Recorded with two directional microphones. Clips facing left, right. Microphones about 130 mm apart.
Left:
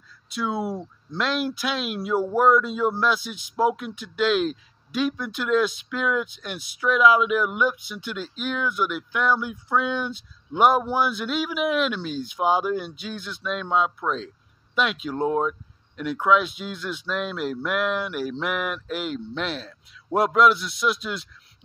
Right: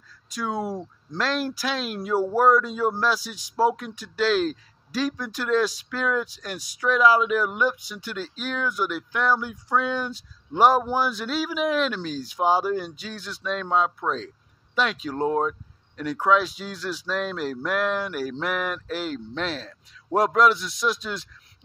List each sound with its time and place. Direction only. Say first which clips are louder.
0.4 s a man's voice: left 1 dB; 40° right (ahead or behind)